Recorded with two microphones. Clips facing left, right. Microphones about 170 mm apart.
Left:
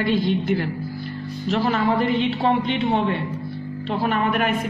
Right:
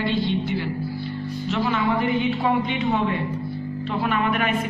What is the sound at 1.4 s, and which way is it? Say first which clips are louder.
Music: left 3 dB; 40° left (ahead or behind).